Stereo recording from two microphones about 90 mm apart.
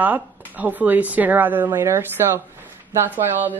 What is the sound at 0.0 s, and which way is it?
Speech, 15° right (ahead or behind).